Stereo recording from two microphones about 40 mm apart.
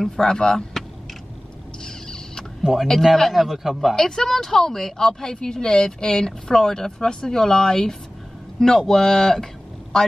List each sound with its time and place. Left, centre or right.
0.1 s speech: centre
1.9 s rodents: centre
2.6 s a man's voice: centre
3.9 s a man's voice: centre